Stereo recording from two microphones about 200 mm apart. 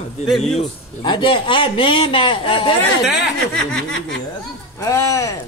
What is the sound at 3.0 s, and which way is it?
Speech, centre (ahead or behind).